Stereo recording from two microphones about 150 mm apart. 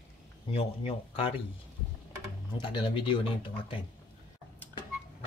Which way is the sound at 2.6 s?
35° left (ahead or behind).